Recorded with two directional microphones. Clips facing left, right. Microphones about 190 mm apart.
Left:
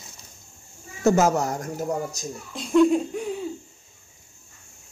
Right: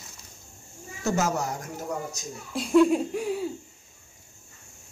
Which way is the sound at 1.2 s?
45° left (ahead or behind).